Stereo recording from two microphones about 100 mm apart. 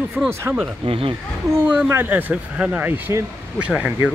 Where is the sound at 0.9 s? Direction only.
65° right (ahead or behind).